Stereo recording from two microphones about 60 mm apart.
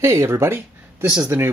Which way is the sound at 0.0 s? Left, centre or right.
Right.